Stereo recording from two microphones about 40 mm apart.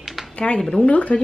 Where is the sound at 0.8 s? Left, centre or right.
Left.